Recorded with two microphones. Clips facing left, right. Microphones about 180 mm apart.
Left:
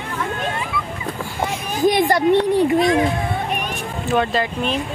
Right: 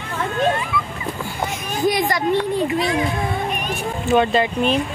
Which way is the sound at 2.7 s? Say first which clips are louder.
Left 5 dB; 45° left (ahead or behind).